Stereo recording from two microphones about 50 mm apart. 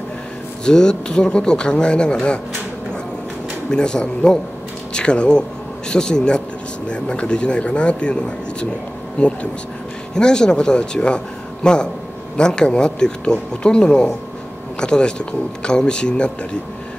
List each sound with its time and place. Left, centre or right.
0.7 s a man's voice: centre
3.7 s a man's voice: centre